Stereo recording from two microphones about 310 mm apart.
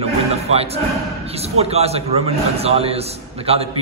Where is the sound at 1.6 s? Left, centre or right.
Centre.